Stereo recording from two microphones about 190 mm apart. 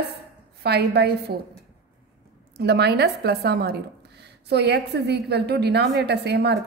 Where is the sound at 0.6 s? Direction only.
60° right (ahead or behind).